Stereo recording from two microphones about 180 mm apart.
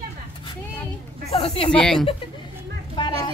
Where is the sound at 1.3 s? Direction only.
30° left (ahead or behind).